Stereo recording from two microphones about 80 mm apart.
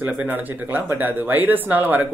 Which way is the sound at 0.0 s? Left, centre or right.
Right.